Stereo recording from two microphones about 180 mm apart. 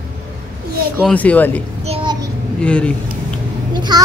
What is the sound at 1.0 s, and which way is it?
Speech, 5° left (ahead or behind).